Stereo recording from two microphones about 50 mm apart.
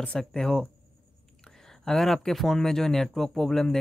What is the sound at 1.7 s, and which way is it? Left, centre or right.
Speech, centre.